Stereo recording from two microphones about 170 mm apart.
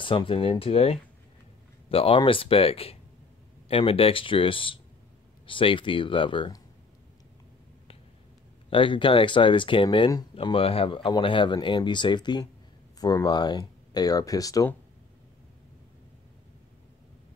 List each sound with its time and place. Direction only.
0.0 s speech: 30° left (ahead or behind)
8.6 s speech: 30° left (ahead or behind)